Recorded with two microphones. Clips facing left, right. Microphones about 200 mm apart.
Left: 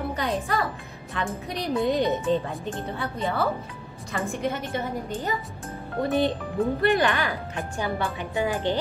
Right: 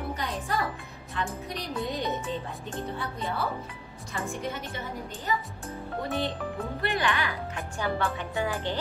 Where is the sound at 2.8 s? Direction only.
90° left.